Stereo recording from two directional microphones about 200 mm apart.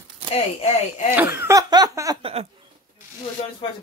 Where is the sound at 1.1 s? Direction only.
10° right (ahead or behind).